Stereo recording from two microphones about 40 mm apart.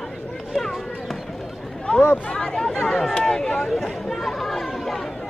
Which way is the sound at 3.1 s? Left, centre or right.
Centre.